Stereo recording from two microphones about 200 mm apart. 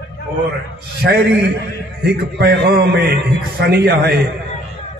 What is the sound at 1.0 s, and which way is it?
A man's voice, 55° right (ahead or behind).